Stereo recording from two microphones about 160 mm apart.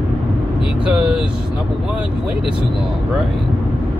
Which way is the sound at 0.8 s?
5° right (ahead or behind).